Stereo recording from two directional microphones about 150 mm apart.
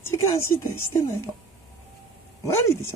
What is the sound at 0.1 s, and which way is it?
Speech, 20° left (ahead or behind).